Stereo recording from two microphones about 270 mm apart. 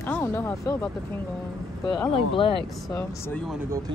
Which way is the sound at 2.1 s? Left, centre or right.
Centre.